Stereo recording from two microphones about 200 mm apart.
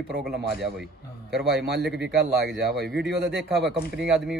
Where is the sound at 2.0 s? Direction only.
55° right (ahead or behind).